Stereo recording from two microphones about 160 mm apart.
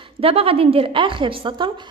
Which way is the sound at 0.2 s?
35° right (ahead or behind).